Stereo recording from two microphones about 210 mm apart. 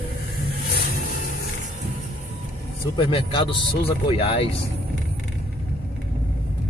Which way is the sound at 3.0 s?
25° left (ahead or behind).